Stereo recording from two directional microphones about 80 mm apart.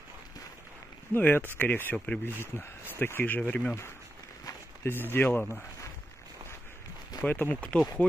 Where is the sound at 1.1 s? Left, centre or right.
Left.